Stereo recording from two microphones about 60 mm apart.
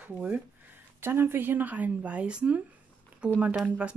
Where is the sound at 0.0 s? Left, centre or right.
Right.